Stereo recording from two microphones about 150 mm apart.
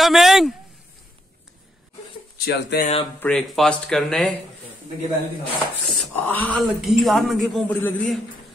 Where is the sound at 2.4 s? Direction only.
90° left.